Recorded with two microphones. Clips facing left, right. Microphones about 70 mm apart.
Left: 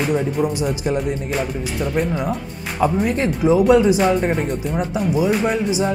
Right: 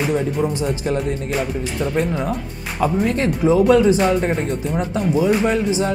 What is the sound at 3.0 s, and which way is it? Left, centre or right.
Speech, centre.